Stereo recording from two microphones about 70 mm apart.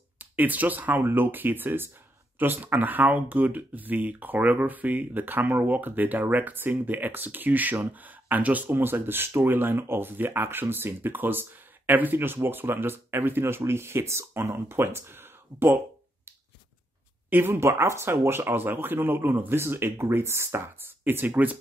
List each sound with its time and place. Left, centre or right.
0.2 s speech: right
17.3 s speech: right